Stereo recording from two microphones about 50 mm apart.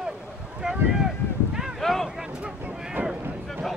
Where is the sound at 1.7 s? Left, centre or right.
Centre.